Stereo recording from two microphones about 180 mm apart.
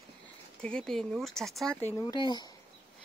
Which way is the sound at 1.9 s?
20° left (ahead or behind).